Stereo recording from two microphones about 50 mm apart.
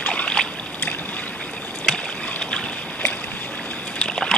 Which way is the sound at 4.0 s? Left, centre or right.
Centre.